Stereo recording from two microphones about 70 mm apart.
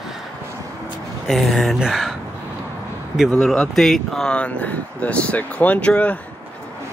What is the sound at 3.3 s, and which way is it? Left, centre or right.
Speech, centre.